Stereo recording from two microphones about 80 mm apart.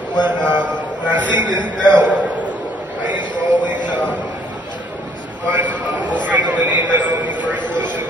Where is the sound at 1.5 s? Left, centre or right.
Left.